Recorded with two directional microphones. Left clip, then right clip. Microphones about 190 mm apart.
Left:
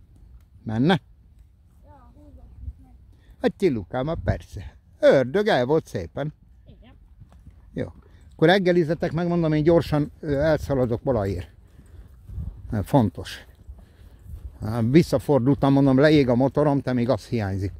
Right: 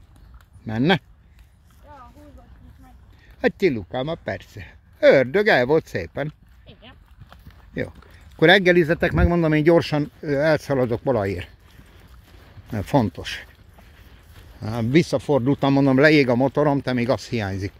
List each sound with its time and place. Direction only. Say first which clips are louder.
0.7 s speech: right 2 dB; 25° left (ahead or behind)
3.3 s speech: right 2 dB; 25° left (ahead or behind)
6.6 s a sound: right 10 dB; 5° left (ahead or behind)
7.2 s a sound: right 10 dB; 15° left (ahead or behind)
8.4 s speech: right 4 dB; 15° left (ahead or behind)
12.7 s speech: right 1 dB; 25° left (ahead or behind)
14.6 s speech: even; 25° left (ahead or behind)
14.9 s speech: even; 40° left (ahead or behind)
15.7 s speech: right 2 dB; 20° left (ahead or behind)